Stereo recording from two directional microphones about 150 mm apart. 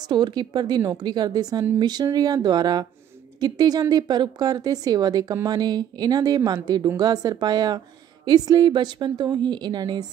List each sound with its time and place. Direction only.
0.0 s a woman's voice: 30° right (ahead or behind)